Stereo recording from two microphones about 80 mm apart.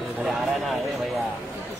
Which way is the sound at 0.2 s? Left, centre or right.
Centre.